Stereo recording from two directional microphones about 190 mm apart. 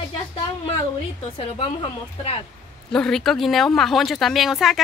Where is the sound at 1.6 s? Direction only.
30° left (ahead or behind).